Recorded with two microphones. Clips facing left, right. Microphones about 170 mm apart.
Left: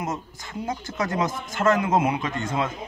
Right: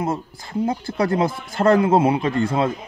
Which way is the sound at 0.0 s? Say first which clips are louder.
Right 6 dB; 30° right (ahead or behind).